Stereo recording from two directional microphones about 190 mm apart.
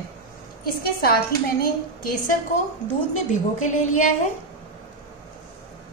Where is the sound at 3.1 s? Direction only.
40° left (ahead or behind).